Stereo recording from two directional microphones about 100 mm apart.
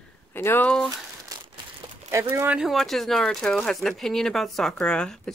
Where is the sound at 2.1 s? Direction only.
30° right (ahead or behind).